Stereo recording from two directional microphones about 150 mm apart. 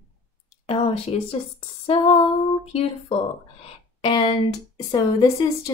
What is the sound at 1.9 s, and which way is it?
Speech, 40° left (ahead or behind).